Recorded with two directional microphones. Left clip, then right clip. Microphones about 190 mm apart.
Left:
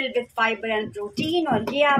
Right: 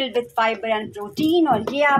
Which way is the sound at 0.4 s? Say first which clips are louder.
Right 3 dB; 20° right (ahead or behind).